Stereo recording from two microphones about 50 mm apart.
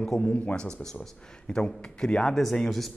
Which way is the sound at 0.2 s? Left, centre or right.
Left.